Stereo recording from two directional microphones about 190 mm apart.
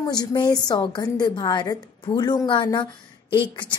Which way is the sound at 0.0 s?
20° left (ahead or behind).